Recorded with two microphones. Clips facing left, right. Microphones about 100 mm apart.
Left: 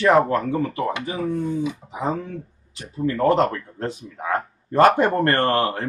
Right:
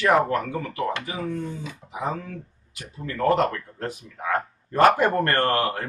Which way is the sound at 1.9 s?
30° left (ahead or behind).